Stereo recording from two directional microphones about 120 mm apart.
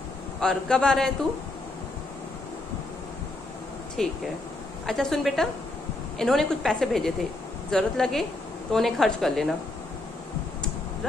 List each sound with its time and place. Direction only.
0.4 s a woman's voice: 5° left (ahead or behind)
4.0 s a woman's voice: 5° left (ahead or behind)